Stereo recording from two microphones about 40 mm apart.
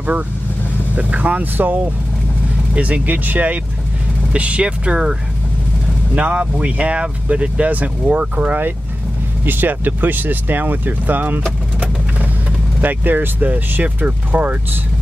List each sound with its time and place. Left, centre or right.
0.9 s speech: right
2.7 s speech: right
4.3 s speech: right
6.1 s speech: right
12.8 s speech: right
13.4 s speech: right